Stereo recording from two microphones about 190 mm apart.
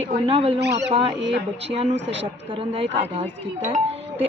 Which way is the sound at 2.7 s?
25° right (ahead or behind).